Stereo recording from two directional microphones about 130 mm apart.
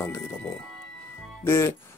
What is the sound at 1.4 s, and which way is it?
Speech, 20° left (ahead or behind).